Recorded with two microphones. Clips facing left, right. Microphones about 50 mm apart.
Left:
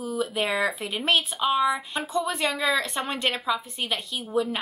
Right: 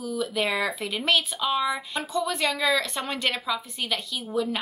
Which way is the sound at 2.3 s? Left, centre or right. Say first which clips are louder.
Right 2 dB; left.